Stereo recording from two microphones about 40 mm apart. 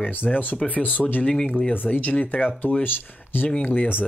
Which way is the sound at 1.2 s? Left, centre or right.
Centre.